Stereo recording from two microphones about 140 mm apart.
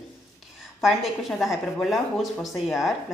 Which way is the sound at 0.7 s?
Centre (ahead or behind).